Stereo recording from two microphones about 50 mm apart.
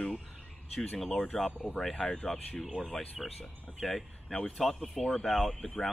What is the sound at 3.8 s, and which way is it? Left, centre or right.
Speech, centre.